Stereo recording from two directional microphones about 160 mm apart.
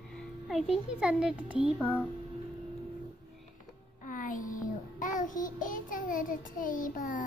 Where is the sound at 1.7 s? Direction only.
10° left (ahead or behind).